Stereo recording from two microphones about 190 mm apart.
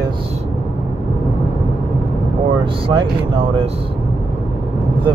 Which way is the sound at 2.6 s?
25° right (ahead or behind).